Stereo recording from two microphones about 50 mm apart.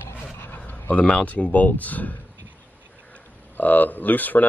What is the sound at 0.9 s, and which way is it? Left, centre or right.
Speech, left.